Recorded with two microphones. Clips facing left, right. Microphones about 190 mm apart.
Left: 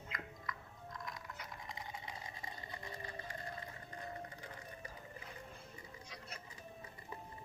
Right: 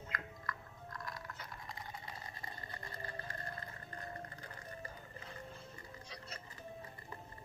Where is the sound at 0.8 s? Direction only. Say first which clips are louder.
Right 1 dB; centre (ahead or behind).